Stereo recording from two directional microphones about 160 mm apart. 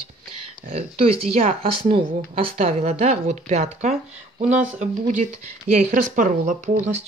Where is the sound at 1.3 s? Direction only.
35° right (ahead or behind).